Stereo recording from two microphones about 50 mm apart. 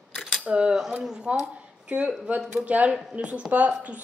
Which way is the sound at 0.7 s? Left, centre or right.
Centre.